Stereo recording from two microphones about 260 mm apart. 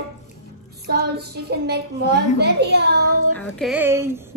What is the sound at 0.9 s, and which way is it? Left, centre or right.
Child singing, right.